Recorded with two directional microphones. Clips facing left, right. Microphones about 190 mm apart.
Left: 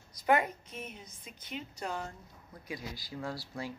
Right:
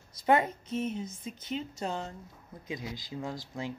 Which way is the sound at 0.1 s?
25° right (ahead or behind).